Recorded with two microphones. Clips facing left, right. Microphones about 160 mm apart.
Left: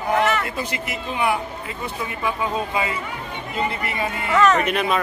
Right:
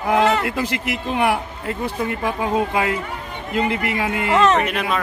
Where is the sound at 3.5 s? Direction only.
80° right.